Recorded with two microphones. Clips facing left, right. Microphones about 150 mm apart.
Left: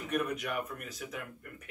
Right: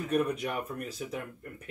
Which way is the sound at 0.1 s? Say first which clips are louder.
Right 4 dB; 30° right (ahead or behind).